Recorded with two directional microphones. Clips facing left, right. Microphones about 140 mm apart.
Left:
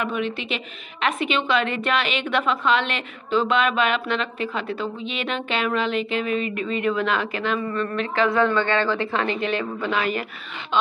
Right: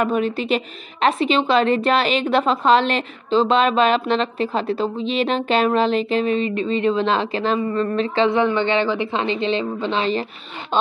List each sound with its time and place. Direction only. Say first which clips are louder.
0.0 s a woman's voice: right 6 dB; 40° right (ahead or behind)